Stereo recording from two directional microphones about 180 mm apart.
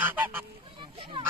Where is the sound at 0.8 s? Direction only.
25° right (ahead or behind).